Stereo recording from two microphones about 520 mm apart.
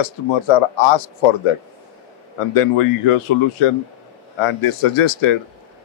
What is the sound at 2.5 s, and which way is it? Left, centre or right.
Speech, left.